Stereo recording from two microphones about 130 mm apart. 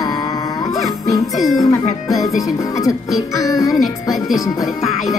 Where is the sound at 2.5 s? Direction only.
25° left (ahead or behind).